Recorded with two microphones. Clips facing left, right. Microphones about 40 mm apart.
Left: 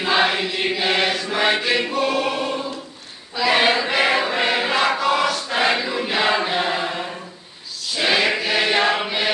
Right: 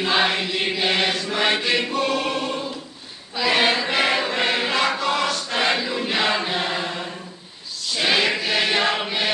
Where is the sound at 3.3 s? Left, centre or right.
Centre.